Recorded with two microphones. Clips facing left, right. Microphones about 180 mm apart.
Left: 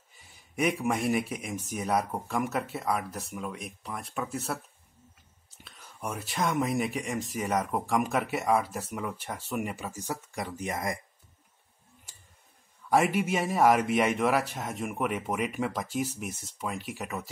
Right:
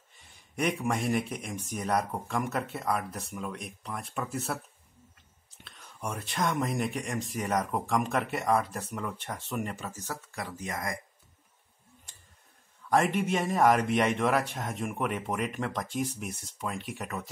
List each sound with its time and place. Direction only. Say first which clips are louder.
0.1 s speech: left 2 dB; 5° left (ahead or behind)
5.6 s speech: even; centre (ahead or behind); by 11.0 s 20° left (ahead or behind)
12.9 s speech: left 1 dB; 5° left (ahead or behind)